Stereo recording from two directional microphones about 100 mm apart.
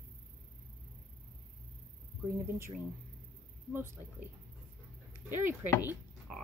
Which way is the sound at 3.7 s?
20° right (ahead or behind).